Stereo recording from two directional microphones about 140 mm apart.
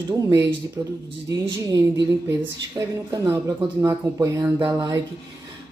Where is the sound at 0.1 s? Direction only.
25° right (ahead or behind).